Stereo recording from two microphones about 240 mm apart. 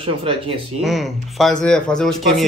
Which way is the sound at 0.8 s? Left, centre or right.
Centre.